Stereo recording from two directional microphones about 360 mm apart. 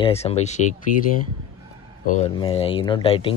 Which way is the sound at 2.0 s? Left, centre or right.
Centre.